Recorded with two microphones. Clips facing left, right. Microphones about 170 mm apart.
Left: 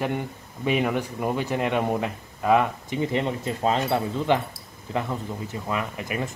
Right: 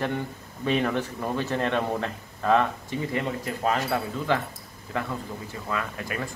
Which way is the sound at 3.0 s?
25° left (ahead or behind).